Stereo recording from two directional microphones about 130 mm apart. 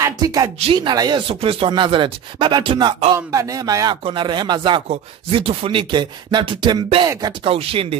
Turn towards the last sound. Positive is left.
turn(degrees=-45)  # may be behind; listen again after turning